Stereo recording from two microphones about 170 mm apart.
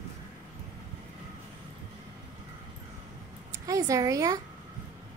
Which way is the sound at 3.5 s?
20° right (ahead or behind).